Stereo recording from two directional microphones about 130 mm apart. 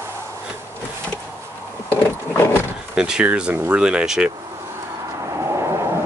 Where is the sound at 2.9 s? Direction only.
5° right (ahead or behind).